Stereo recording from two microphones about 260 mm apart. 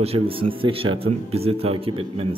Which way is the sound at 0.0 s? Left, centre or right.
Right.